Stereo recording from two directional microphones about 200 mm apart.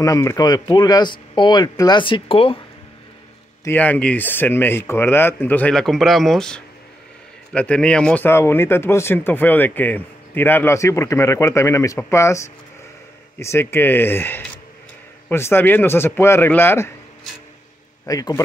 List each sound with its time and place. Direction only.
0.0 s a man's voice: 15° left (ahead or behind)
3.6 s speech: 10° left (ahead or behind)
18.0 s speech: 15° left (ahead or behind)